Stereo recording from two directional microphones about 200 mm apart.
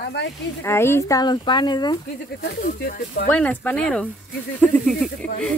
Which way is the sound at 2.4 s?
50° left (ahead or behind).